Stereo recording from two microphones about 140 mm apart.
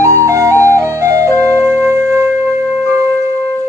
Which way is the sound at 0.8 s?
20° right (ahead or behind).